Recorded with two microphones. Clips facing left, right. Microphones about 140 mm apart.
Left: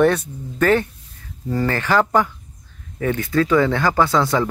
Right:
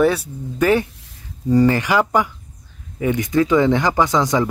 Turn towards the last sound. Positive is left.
turn(degrees=-15)  # may be behind; listen again after turning